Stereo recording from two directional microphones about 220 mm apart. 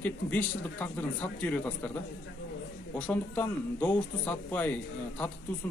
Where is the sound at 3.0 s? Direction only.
5° left (ahead or behind).